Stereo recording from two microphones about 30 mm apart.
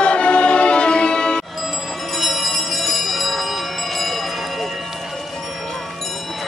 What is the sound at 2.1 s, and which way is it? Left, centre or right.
Bell, centre.